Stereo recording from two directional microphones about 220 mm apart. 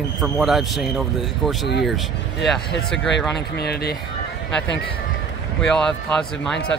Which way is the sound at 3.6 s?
45° left (ahead or behind).